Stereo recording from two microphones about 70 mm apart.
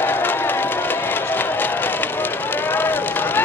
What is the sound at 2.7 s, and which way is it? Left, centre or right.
Run, left.